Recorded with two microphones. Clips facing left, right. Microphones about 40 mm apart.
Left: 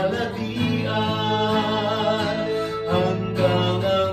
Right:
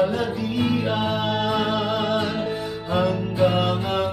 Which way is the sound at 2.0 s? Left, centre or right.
Left.